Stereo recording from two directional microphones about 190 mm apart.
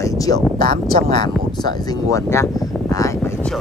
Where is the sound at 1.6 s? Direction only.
20° left (ahead or behind).